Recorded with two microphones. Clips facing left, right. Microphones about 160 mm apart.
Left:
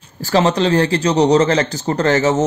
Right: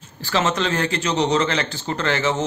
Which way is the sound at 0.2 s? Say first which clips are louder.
Left 7 dB; 35° left (ahead or behind).